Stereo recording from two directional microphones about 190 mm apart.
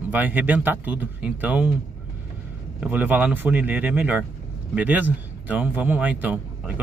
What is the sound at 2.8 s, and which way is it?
A man's voice, 10° right (ahead or behind).